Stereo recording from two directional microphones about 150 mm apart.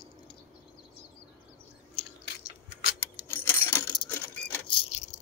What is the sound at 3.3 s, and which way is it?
Coin, 15° left (ahead or behind).